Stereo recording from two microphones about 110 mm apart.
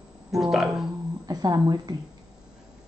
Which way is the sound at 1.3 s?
35° right (ahead or behind).